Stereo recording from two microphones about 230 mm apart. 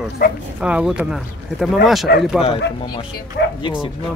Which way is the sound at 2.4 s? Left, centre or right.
Left.